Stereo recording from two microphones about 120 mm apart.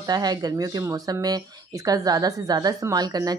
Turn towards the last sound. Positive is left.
turn(degrees=-30)  # may be behind; listen again after turning